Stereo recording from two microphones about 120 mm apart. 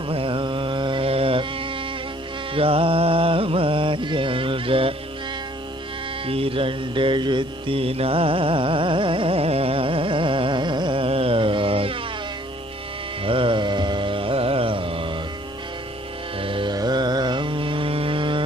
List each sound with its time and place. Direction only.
0.1 s insect: 45° right (ahead or behind)
2.5 s music: 50° right (ahead or behind)
6.2 s mantra: 50° right (ahead or behind)
13.2 s carnatic music: 45° right (ahead or behind)
16.3 s music: 45° right (ahead or behind)
16.7 s music: 35° right (ahead or behind)